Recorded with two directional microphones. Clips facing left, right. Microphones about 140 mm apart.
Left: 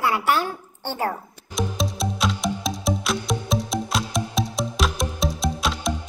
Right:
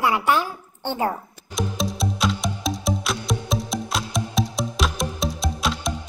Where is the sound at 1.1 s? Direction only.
Centre (ahead or behind).